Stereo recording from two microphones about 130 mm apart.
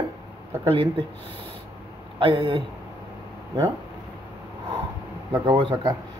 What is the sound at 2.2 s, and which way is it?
Speech, 45° right (ahead or behind).